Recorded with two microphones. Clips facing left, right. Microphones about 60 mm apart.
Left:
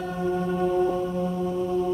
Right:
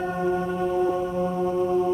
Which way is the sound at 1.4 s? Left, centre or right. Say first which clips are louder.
Right 4 dB; right.